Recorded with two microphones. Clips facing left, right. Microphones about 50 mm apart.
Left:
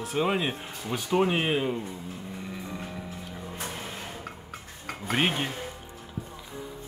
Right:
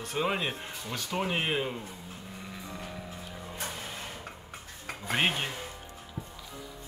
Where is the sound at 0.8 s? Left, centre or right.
Left; by 1.8 s centre.